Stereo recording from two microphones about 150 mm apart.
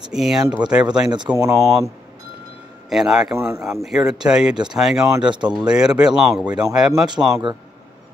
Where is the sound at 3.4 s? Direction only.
15° right (ahead or behind).